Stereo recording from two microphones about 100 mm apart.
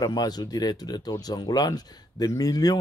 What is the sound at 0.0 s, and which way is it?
Speech, 40° left (ahead or behind).